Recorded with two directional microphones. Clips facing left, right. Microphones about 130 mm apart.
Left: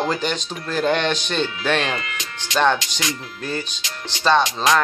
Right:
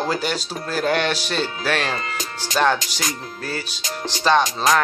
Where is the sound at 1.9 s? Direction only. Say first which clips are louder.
Right 2 dB; 40° right (ahead or behind).